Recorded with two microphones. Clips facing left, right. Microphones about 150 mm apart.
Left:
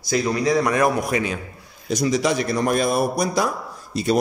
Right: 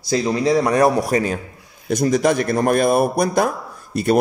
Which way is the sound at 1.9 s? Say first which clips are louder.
Right 4 dB; 55° right (ahead or behind).